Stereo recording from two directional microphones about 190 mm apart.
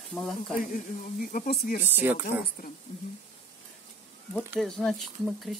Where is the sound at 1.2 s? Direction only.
45° left (ahead or behind).